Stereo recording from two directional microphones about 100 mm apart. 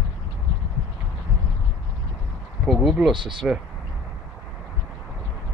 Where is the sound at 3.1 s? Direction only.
55° right (ahead or behind).